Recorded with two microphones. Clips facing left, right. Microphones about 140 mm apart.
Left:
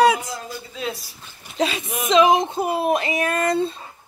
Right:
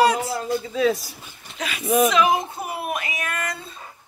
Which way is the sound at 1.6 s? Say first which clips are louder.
Right 4 dB; 25° left (ahead or behind).